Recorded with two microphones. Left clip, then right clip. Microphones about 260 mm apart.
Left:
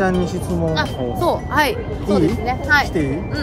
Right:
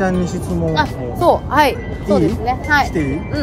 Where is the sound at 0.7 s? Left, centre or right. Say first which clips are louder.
Right 3 dB; centre.